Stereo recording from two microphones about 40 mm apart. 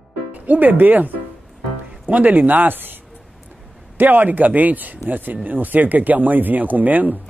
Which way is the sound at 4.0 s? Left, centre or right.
Right.